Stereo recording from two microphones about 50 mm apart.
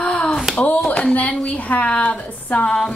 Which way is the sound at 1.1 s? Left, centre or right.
Left.